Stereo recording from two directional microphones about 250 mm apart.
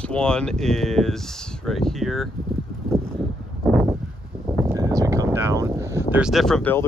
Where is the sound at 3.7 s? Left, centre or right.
Centre.